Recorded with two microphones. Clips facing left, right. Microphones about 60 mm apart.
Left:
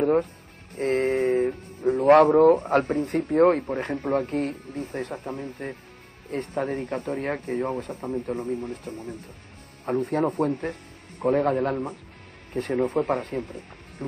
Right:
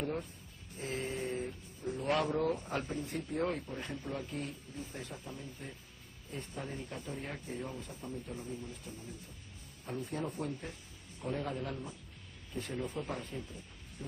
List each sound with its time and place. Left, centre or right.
0.0 s speech: left